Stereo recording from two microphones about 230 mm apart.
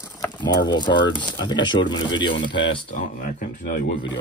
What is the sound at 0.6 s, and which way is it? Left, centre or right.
Speech, centre.